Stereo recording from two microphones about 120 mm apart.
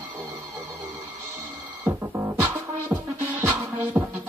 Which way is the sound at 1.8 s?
25° right (ahead or behind).